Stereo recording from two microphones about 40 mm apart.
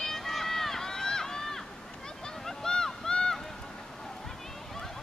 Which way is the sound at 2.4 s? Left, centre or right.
Centre.